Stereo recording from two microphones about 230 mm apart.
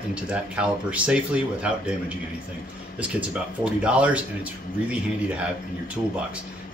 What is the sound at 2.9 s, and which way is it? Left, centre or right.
Speech, centre.